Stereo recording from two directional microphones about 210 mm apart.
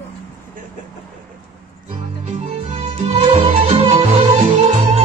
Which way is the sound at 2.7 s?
30° right (ahead or behind).